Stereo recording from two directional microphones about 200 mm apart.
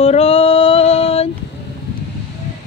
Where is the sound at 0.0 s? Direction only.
30° left (ahead or behind).